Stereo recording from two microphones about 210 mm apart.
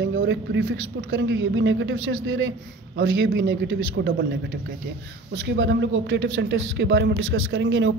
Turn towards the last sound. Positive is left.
turn(degrees=-60)  # may be behind; listen again after turning